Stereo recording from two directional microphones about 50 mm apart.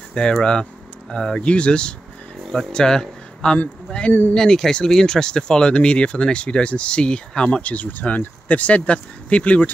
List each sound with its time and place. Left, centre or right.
0.1 s speech: centre
7.5 s speech: left